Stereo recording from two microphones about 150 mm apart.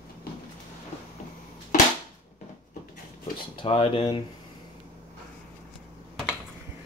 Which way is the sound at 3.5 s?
40° left (ahead or behind).